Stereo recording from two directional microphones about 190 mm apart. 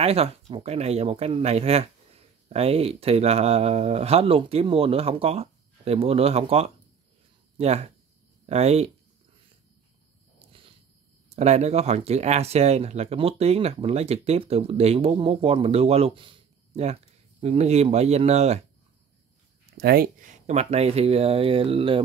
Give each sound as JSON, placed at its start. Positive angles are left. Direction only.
{"t": 0.0, "sound": "speech", "side_deg": -30}
{"t": 11.2, "sound": "speech", "side_deg": -35}
{"t": 19.8, "sound": "speech", "side_deg": -50}